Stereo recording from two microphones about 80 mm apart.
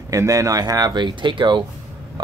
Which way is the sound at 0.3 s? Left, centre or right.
Right.